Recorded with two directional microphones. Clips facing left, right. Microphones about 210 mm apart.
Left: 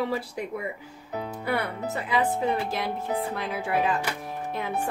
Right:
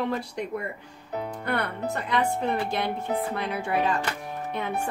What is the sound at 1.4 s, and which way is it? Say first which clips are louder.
Speech: left 1 dB; 5° left (ahead or behind).